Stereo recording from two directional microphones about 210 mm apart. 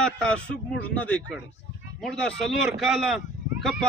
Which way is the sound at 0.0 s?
5° left (ahead or behind).